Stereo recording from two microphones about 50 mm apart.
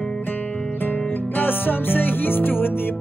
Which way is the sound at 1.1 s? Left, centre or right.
Left.